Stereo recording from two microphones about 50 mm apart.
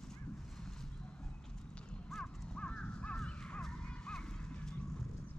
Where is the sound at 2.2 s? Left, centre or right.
Left.